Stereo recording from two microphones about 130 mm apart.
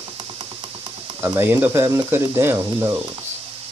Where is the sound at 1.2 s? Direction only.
20° right (ahead or behind).